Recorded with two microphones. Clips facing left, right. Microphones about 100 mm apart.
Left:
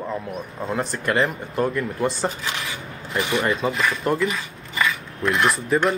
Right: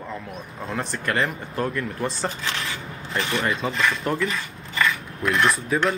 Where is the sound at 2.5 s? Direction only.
15° left (ahead or behind).